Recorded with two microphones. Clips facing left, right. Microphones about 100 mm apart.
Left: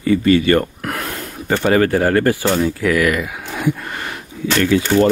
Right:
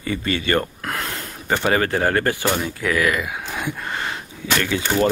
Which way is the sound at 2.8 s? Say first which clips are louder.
Left 1 dB; 30° right (ahead or behind).